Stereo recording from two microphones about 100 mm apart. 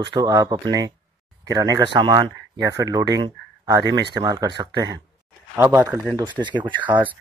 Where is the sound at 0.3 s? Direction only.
35° right (ahead or behind).